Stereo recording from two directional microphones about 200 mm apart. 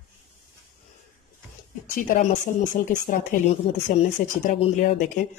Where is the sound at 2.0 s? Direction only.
40° left (ahead or behind).